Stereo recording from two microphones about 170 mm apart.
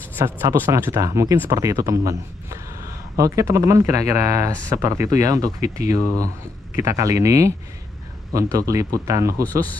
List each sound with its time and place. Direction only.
0.2 s speech: 15° right (ahead or behind)